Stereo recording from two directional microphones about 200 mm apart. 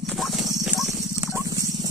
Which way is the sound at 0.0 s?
Centre (ahead or behind).